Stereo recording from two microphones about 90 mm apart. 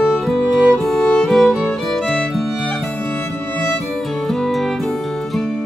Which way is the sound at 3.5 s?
15° left (ahead or behind).